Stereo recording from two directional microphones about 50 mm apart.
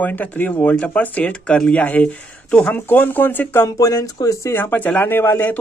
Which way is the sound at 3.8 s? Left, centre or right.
Left.